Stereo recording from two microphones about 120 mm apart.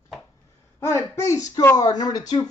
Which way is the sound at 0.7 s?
25° left (ahead or behind).